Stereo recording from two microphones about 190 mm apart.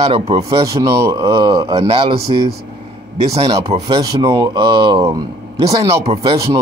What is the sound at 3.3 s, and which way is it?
Speech, 20° right (ahead or behind).